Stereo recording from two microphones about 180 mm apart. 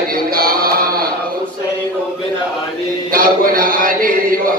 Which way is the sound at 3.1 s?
50° right (ahead or behind).